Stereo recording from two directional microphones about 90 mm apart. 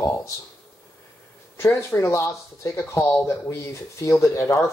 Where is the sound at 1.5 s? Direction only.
30° left (ahead or behind).